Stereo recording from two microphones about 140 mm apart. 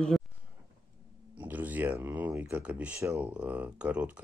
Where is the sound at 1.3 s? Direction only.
10° right (ahead or behind).